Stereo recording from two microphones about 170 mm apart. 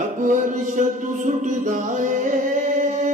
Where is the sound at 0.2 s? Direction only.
50° right (ahead or behind).